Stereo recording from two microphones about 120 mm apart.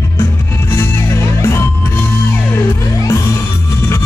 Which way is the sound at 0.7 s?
20° left (ahead or behind).